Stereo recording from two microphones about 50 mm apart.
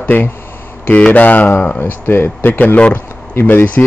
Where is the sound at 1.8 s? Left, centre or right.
Left.